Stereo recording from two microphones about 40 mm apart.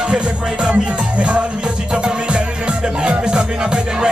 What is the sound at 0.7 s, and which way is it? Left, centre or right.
Music, right.